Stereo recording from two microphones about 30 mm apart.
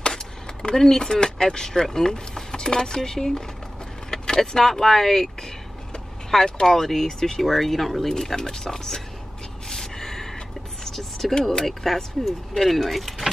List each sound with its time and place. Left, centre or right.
0.0 s a sound: left
0.7 s speech: centre
6.3 s speech: centre
7.4 s speech: centre
9.7 s gasp: centre
10.8 s a sound: centre
11.4 s speech: centre